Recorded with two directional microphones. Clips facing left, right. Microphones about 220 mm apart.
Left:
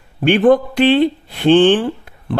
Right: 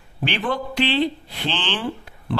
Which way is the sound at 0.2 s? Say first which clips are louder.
Left 14 dB; 50° left (ahead or behind).